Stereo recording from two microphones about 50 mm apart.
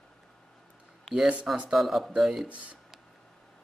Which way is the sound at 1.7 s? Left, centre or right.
Centre.